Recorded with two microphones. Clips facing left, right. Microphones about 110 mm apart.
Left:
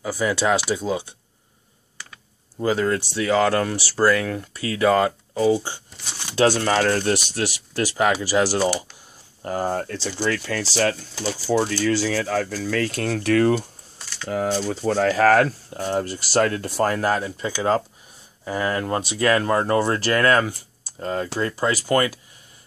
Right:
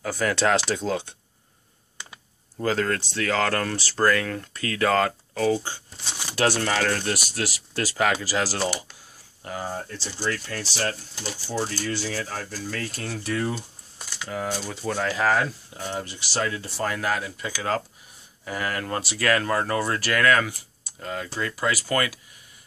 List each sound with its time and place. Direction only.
0.0 s speech: 10° left (ahead or behind)
2.6 s speech: 15° left (ahead or behind)
9.4 s speech: 40° left (ahead or behind)
9.7 s speech: 80° left
14.3 s speech: 45° left (ahead or behind)
15.0 s speech: 50° left (ahead or behind); by 22.2 s 30° left (ahead or behind)